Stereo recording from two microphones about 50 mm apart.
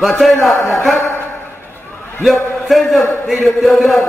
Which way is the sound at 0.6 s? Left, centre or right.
Left.